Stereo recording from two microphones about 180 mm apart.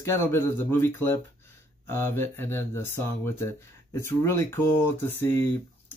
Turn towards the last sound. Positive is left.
turn(degrees=10)  # may be behind; listen again after turning